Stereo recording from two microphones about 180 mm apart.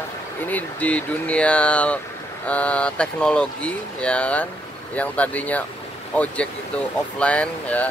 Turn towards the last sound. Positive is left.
turn(degrees=10)  # may be behind; listen again after turning